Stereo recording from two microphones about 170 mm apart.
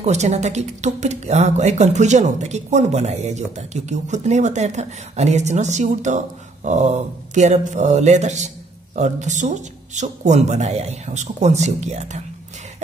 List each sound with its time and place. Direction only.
0.0 s speech: 40° right (ahead or behind)